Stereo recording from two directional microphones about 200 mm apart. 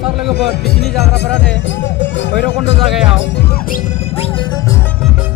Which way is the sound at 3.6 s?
45° left (ahead or behind).